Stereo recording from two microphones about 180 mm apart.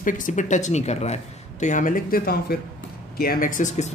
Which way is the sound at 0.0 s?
45° left (ahead or behind).